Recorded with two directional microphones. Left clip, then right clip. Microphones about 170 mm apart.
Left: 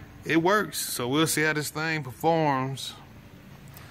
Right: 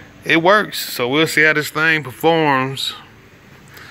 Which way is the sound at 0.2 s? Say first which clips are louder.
Right 10 dB; 10° right (ahead or behind).